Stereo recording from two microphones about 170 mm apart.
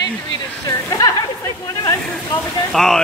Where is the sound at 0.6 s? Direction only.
20° left (ahead or behind).